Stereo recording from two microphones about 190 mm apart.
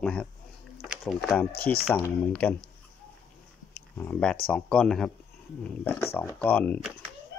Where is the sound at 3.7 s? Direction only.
5° left (ahead or behind).